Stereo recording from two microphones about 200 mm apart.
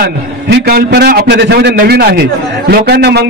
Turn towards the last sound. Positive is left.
turn(degrees=-55)  # may be behind; listen again after turning